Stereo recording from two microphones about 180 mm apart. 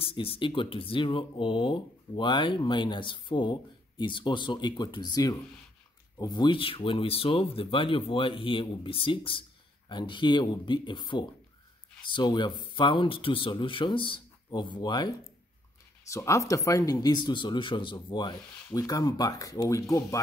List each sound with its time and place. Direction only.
0.0 s speech: 30° left (ahead or behind)